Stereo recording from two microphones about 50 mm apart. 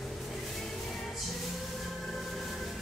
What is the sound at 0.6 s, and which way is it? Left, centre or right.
Music, centre.